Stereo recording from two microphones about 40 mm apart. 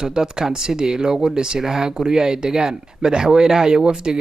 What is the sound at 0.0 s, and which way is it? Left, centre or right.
Speech, centre.